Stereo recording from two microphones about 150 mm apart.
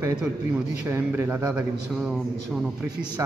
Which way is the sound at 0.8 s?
15° right (ahead or behind).